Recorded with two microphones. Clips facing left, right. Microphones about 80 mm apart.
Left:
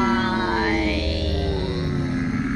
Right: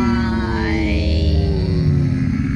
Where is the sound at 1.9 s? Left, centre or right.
Left.